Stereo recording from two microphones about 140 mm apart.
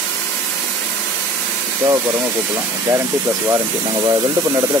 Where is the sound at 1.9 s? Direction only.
20° right (ahead or behind).